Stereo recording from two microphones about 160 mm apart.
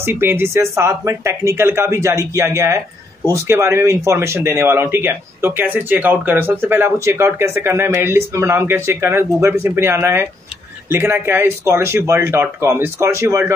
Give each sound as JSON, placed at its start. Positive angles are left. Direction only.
{"t": 0.0, "sound": "speech", "side_deg": -15}